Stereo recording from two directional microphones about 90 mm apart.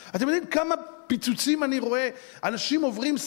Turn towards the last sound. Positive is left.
turn(degrees=15)  # may be behind; listen again after turning